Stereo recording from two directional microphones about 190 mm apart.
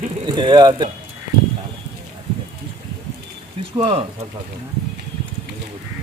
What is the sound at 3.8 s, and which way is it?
Speech, 30° right (ahead or behind).